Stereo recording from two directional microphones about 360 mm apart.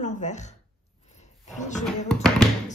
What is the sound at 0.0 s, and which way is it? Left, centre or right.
Speech, centre.